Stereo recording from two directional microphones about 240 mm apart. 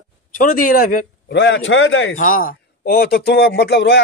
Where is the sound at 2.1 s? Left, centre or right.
Left.